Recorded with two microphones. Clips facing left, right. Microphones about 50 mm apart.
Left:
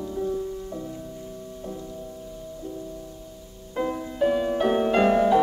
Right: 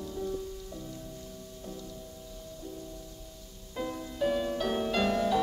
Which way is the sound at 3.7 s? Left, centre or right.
Left.